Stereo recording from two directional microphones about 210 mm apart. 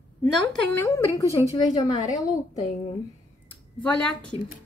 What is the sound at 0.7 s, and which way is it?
A woman's voice, 15° left (ahead or behind).